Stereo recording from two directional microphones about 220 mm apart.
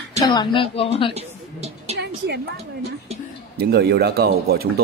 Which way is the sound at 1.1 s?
30° right (ahead or behind).